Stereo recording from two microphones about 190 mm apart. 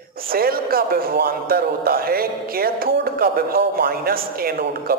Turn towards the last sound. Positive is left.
turn(degrees=-55)  # may be behind; listen again after turning